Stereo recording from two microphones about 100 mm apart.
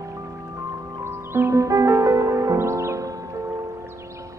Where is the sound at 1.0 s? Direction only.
25° right (ahead or behind).